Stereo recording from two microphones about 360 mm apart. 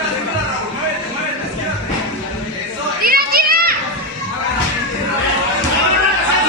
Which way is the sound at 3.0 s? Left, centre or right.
Right.